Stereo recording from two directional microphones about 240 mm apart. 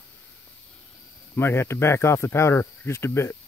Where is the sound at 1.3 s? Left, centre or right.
Centre.